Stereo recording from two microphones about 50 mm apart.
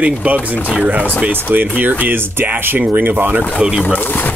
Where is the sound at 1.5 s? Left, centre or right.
Right.